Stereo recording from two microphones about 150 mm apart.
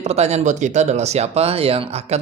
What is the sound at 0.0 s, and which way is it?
Speech, 45° right (ahead or behind).